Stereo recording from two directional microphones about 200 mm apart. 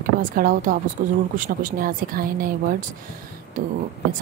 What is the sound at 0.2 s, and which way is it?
A woman's voice, 45° right (ahead or behind).